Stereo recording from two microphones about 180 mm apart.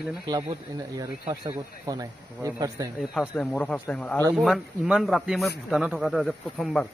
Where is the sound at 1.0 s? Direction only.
20° right (ahead or behind).